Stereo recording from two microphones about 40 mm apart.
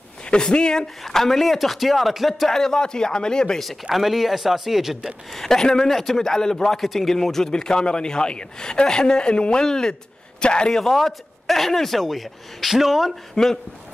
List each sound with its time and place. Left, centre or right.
0.3 s a man's voice: left
1.0 s a man's voice: centre
2.5 s a man's voice: centre
3.9 s a man's voice: centre
5.3 s a man's voice: centre
6.8 s a man's voice: centre; by 10.8 s left
10.8 s a man's voice: centre
13.3 s a man's voice: centre